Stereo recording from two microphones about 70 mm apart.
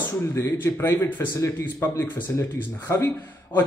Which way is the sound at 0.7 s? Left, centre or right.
Left.